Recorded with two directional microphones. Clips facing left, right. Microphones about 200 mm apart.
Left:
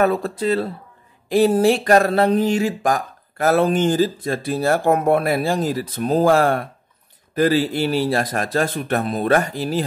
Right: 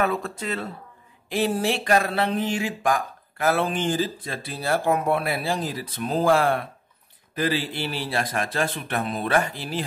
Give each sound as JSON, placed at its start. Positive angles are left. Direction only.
{"t": 0.0, "sound": "speech", "side_deg": 35}